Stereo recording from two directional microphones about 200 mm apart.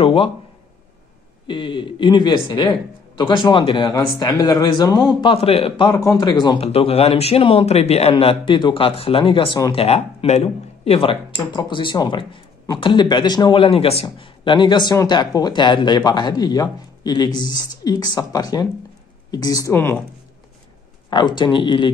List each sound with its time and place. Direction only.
0.0 s a man's voice: 25° left (ahead or behind)
1.5 s a man's voice: 25° left (ahead or behind)
21.1 s a man's voice: 20° left (ahead or behind)